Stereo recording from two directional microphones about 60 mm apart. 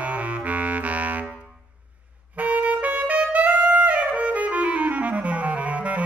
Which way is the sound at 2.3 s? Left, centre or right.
Right.